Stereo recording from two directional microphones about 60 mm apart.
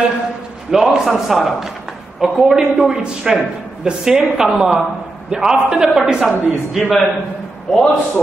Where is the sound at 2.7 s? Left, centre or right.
Centre.